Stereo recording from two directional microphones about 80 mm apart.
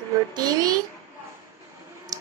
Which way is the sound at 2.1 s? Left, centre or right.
Right.